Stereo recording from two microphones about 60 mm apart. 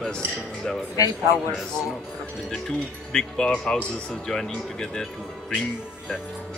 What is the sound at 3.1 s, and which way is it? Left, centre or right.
Speech, centre.